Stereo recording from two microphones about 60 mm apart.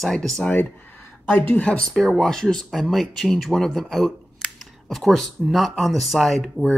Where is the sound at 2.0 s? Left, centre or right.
Centre.